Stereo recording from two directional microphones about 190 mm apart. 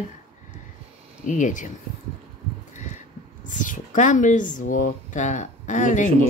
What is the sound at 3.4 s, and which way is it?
Speech, 40° left (ahead or behind).